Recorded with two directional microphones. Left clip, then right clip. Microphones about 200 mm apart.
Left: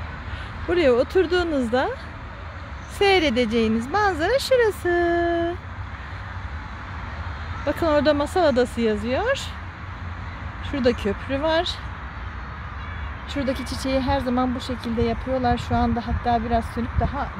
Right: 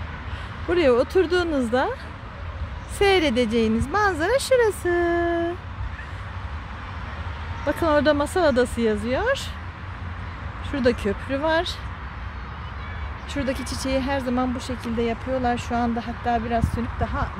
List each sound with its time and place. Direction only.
0.7 s speech: 5° left (ahead or behind)
3.0 s speech: 5° left (ahead or behind)
7.6 s speech: 5° left (ahead or behind)
10.7 s speech: 5° left (ahead or behind)
13.3 s speech: 20° left (ahead or behind)